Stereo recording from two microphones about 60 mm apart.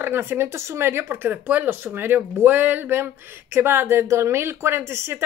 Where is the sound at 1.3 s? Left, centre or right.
Right.